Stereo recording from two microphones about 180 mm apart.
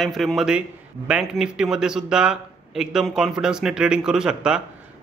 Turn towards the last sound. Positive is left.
turn(degrees=-5)  # may be behind; listen again after turning